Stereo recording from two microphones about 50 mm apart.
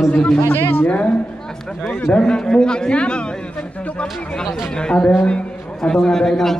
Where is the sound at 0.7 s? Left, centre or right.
Left.